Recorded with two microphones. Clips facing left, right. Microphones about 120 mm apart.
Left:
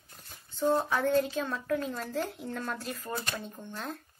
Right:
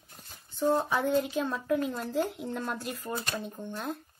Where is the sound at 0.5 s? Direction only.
20° right (ahead or behind).